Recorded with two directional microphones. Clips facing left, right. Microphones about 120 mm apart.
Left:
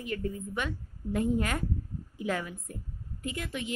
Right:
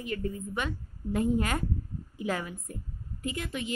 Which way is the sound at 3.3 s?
5° right (ahead or behind).